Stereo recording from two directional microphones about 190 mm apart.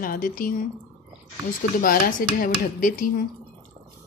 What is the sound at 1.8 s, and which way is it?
Speech, 45° left (ahead or behind).